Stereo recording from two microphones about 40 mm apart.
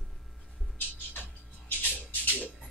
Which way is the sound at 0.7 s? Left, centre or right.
Left.